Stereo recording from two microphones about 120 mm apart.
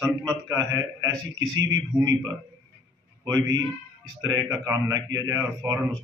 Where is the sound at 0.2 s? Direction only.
30° right (ahead or behind).